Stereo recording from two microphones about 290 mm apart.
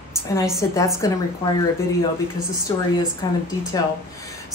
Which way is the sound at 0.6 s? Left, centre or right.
Centre.